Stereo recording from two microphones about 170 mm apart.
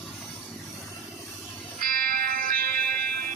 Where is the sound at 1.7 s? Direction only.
60° right (ahead or behind).